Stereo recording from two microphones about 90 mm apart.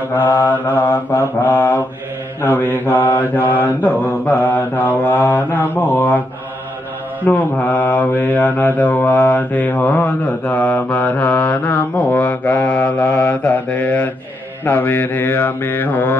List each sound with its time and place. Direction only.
0.1 s mantra: 20° left (ahead or behind)
7.2 s mantra: 15° left (ahead or behind)